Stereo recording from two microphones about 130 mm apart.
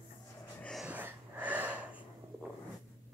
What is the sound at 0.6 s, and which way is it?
Wheeze, 5° left (ahead or behind).